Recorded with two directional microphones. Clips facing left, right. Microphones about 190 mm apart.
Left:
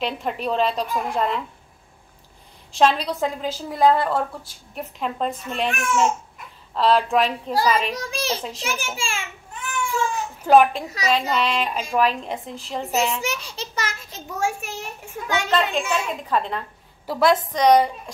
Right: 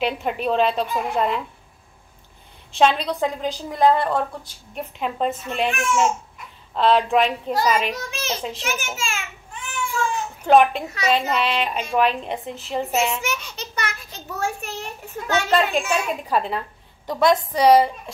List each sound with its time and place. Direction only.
0.0 s a child's voice: 5° right (ahead or behind)
2.7 s a child's voice: centre (ahead or behind)
8.1 s a child's voice: 35° left (ahead or behind)
10.4 s a child's voice: 5° left (ahead or behind)
12.9 s a child's voice: 35° left (ahead or behind)
14.4 s a child's voice: 10° left (ahead or behind)
15.5 s a child's voice: 10° right (ahead or behind)
17.0 s a child's voice: 5° left (ahead or behind)